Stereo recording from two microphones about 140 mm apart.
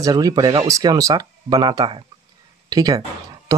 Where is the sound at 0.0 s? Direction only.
25° right (ahead or behind).